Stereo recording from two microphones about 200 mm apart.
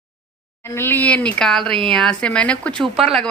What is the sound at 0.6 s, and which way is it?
Speech, 10° left (ahead or behind).